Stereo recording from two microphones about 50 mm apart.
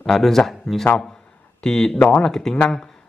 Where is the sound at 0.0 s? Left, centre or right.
Centre.